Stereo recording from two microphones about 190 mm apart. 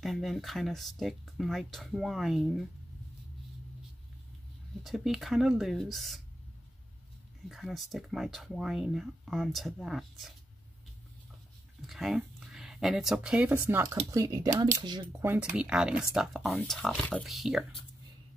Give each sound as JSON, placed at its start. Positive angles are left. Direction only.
{"t": 0.0, "sound": "speech", "side_deg": 0}
{"t": 4.8, "sound": "speech", "side_deg": 0}
{"t": 7.4, "sound": "speech", "side_deg": 0}
{"t": 11.8, "sound": "speech", "side_deg": 0}